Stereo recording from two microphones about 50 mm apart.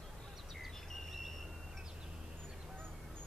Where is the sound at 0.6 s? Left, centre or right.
Centre.